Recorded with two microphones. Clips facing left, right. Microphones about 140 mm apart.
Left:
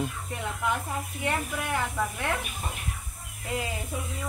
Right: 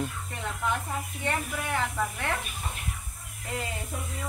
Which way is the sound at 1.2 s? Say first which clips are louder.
Left 1 dB; 5° left (ahead or behind).